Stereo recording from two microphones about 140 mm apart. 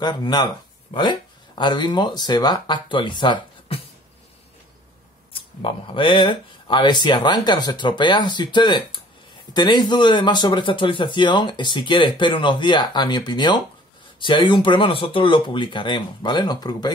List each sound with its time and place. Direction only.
0.0 s a man's voice: 30° left (ahead or behind)
5.3 s a man's voice: 40° left (ahead or behind)